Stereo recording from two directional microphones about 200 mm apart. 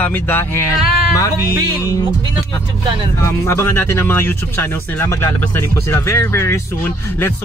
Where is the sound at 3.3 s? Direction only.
10° left (ahead or behind).